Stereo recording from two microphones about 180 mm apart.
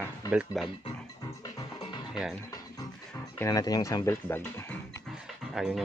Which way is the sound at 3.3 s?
20° left (ahead or behind).